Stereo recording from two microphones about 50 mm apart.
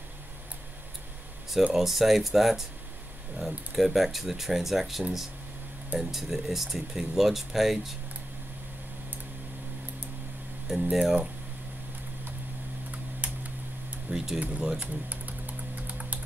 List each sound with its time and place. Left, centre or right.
1.6 s speech: centre
10.7 s speech: centre
13.2 s a sound: right
14.1 s speech: centre
14.4 s speech: right
14.8 s typing: right